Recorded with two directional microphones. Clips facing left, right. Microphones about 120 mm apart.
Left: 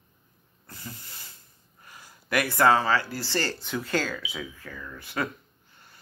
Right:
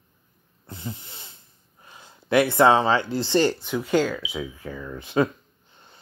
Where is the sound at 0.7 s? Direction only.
20° right (ahead or behind).